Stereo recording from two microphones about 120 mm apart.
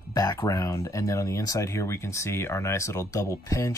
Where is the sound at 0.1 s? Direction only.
30° left (ahead or behind).